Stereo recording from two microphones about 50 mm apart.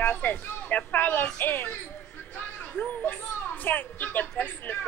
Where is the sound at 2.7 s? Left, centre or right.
Left.